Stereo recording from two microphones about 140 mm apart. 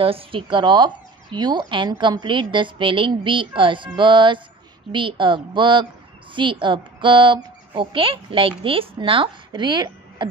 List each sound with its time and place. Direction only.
0.0 s speech: 40° right (ahead or behind)